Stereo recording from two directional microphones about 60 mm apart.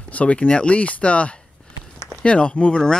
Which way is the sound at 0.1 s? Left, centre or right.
Left.